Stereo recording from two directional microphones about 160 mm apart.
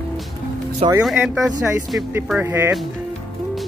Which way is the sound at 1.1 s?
5° right (ahead or behind).